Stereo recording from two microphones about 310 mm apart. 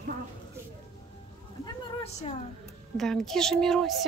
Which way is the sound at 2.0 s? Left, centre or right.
Left.